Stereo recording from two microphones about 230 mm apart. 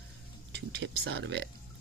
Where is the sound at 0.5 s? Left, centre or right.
Right.